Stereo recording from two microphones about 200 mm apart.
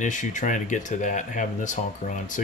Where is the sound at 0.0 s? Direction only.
40° left (ahead or behind).